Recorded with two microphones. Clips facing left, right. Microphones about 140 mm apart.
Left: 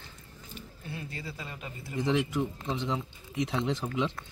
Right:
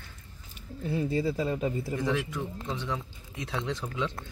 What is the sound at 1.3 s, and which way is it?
Speech, 35° right (ahead or behind).